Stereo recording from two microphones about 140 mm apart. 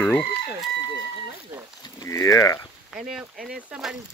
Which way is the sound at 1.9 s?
20° left (ahead or behind).